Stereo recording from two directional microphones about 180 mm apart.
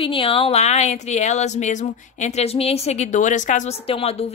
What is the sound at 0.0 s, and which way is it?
Speech, 30° left (ahead or behind).